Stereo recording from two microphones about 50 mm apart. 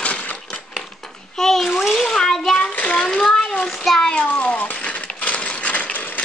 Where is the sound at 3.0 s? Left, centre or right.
Centre.